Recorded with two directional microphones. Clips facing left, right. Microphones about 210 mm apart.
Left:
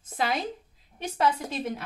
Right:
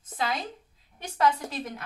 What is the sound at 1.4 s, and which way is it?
Speech, 25° left (ahead or behind).